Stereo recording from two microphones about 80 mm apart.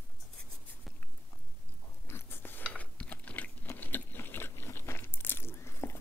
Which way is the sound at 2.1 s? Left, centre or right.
Left.